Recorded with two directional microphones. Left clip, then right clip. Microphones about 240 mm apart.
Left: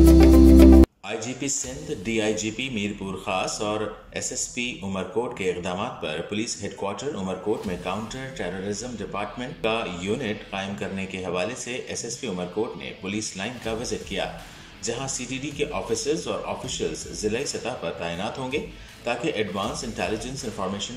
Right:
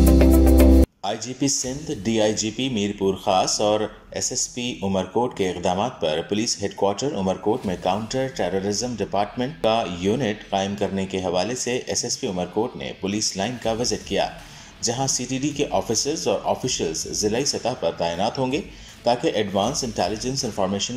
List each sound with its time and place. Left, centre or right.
1.0 s speech: right